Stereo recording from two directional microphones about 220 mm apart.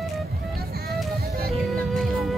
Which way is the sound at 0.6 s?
45° right (ahead or behind).